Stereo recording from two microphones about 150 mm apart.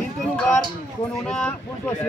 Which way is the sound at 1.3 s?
5° left (ahead or behind).